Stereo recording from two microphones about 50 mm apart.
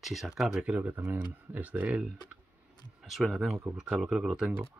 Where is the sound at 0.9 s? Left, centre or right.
Right.